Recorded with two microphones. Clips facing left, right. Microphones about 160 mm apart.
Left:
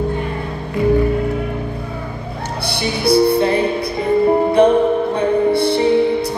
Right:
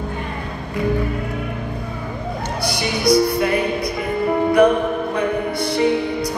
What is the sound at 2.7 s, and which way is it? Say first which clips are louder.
Music: left 2 dB; 30° left (ahead or behind).